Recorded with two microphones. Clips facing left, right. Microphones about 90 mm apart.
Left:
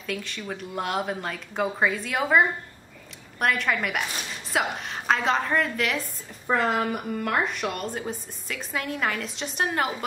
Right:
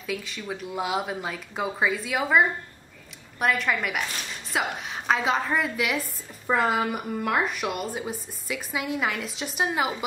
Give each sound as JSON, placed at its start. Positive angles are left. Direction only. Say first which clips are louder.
{"t": 0.0, "sound": "a woman's voice", "louder": "even", "side_deg": -5}